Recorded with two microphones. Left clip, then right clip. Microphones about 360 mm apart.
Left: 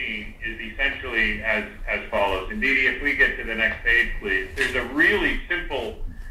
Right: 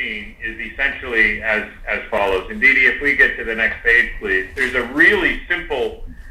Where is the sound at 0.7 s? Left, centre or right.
Right.